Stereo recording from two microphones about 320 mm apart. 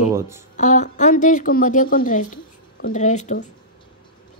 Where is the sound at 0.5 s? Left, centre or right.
Left.